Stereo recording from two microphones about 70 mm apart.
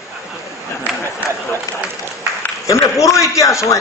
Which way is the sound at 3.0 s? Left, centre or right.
Left.